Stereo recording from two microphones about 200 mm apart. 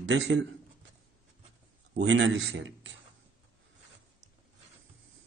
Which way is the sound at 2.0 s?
65° right (ahead or behind).